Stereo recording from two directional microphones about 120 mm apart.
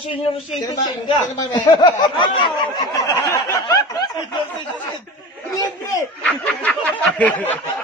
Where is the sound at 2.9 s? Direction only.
25° left (ahead or behind).